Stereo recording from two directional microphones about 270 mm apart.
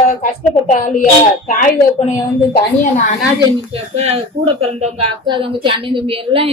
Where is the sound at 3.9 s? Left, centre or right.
Right.